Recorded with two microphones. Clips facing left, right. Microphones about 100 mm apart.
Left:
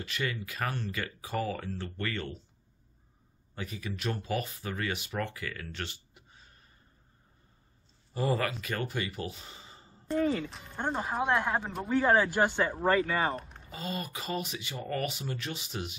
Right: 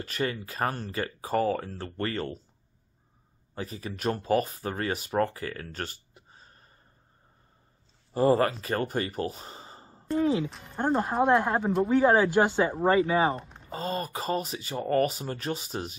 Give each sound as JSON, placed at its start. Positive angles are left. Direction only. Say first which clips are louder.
{"t": 0.0, "sound": "speech", "louder": "right 4 dB", "side_deg": -40}
{"t": 3.5, "sound": "speech", "louder": "right 3 dB", "side_deg": -35}
{"t": 8.1, "sound": "speech", "louder": "right 8 dB", "side_deg": -40}
{"t": 10.0, "sound": "speech", "louder": "right 3 dB", "side_deg": 0}
{"t": 11.9, "sound": "speech", "louder": "right 3 dB", "side_deg": -15}
{"t": 13.7, "sound": "speech", "louder": "right 6 dB", "side_deg": -40}